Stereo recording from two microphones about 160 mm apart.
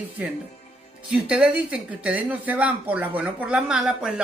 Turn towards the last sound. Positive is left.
turn(degrees=-5)  # may be behind; listen again after turning